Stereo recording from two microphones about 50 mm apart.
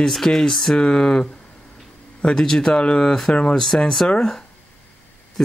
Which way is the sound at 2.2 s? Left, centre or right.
Centre.